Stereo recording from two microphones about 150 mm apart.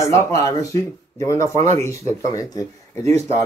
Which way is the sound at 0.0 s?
20° left (ahead or behind).